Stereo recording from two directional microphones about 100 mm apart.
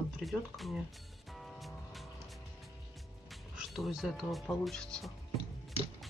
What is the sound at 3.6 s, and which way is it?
Speech, 5° right (ahead or behind).